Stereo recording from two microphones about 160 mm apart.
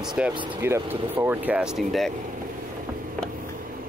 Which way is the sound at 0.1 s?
5° right (ahead or behind).